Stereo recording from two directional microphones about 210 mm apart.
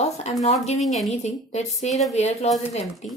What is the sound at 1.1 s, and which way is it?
Speech, 30° left (ahead or behind).